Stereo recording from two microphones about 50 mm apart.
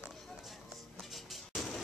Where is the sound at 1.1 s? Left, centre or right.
Centre.